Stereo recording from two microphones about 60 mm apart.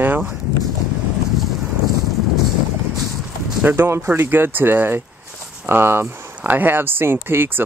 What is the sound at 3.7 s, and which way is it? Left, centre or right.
Speech, right.